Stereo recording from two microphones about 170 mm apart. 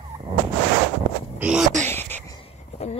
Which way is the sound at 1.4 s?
5° right (ahead or behind).